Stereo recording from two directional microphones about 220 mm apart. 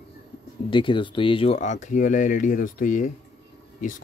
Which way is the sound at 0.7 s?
20° left (ahead or behind).